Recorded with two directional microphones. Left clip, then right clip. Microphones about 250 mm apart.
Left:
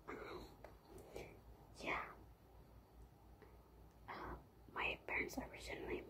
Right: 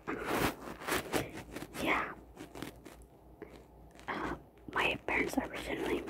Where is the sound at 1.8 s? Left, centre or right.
Right.